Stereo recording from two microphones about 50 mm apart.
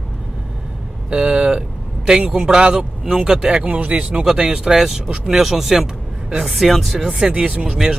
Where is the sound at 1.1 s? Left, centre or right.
Right; by 7.1 s centre.